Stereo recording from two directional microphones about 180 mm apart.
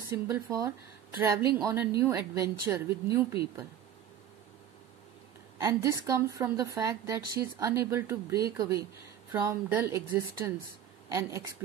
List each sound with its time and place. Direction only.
0.1 s speech: 15° right (ahead or behind)
5.6 s speech: 15° right (ahead or behind)